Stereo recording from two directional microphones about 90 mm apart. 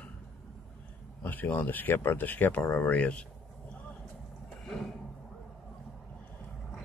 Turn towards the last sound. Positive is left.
turn(degrees=0)  # may be behind; listen again after turning